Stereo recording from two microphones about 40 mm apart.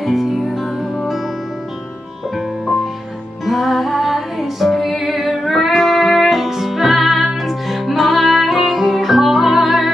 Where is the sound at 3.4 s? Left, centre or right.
Centre.